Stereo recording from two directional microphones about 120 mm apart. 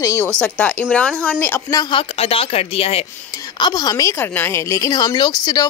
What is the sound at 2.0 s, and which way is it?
Speech, 50° left (ahead or behind).